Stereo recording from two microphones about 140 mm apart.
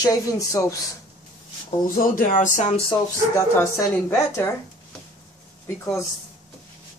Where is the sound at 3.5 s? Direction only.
20° left (ahead or behind).